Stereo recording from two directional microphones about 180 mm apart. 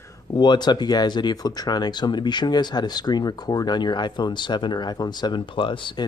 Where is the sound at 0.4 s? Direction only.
25° left (ahead or behind).